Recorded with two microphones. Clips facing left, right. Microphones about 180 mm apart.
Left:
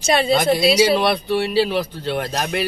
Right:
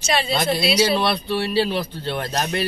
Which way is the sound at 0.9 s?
15° left (ahead or behind).